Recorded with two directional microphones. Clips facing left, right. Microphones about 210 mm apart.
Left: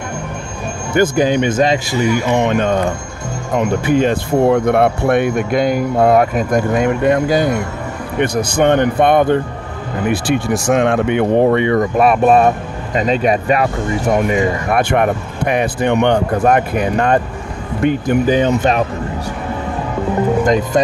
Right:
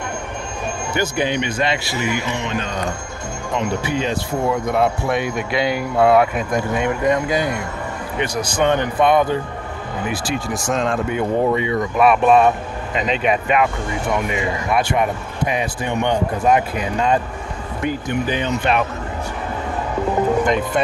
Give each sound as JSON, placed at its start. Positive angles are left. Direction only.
{"t": 0.9, "sound": "speech", "side_deg": 45}
{"t": 8.2, "sound": "speech", "side_deg": 55}
{"t": 11.7, "sound": "speech", "side_deg": 45}
{"t": 18.2, "sound": "speech", "side_deg": 45}
{"t": 20.4, "sound": "speech", "side_deg": 40}